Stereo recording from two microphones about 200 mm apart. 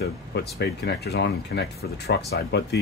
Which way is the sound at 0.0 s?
55° left (ahead or behind).